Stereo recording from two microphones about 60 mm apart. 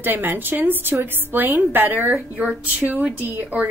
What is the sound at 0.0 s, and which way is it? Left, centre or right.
A woman's voice, right.